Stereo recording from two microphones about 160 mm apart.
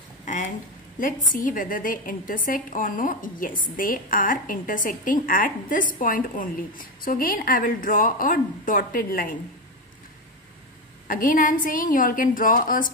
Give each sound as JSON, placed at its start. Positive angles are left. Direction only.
{"t": 0.2, "sound": "a sound", "side_deg": 50}
{"t": 0.9, "sound": "a woman's voice", "side_deg": 55}
{"t": 11.1, "sound": "a woman's voice", "side_deg": 60}